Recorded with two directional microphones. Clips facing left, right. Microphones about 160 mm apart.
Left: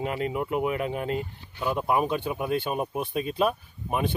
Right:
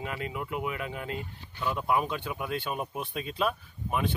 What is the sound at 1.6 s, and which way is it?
Speech, 10° left (ahead or behind).